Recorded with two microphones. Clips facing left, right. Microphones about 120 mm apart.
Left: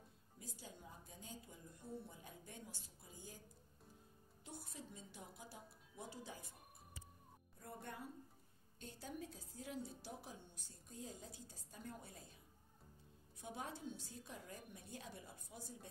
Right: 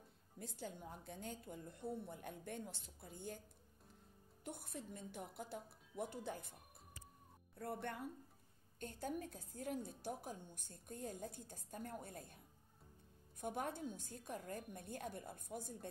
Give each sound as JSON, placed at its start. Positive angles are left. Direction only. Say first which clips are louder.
{"t": 0.4, "sound": "a woman's voice", "louder": "right 7 dB", "side_deg": -60}
{"t": 4.5, "sound": "a woman's voice", "louder": "right 5 dB", "side_deg": -60}
{"t": 7.5, "sound": "speech", "louder": "right 7 dB", "side_deg": -70}
{"t": 8.7, "sound": "a woman's voice", "louder": "right 6 dB", "side_deg": -50}
{"t": 13.4, "sound": "a woman's voice", "louder": "right 6 dB", "side_deg": -55}